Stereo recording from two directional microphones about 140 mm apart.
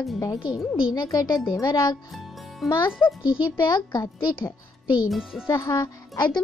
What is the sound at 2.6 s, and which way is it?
Speech, centre (ahead or behind).